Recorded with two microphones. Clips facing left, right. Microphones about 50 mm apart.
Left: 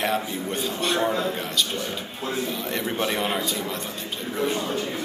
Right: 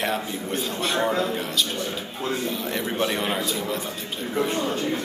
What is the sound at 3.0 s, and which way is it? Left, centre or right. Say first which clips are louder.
Speech: right 1 dB; centre.